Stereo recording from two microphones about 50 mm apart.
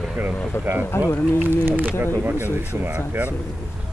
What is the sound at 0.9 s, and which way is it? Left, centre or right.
Speech, left.